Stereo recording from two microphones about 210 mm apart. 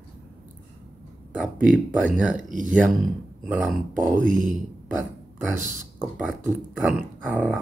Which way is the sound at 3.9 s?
40° right (ahead or behind).